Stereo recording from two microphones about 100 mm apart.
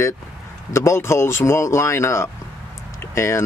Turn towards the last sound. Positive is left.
turn(degrees=25)  # may be behind; listen again after turning